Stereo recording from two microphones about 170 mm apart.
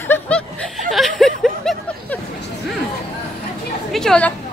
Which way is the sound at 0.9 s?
Centre (ahead or behind).